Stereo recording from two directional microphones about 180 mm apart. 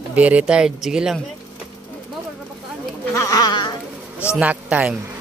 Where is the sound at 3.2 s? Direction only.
20° left (ahead or behind).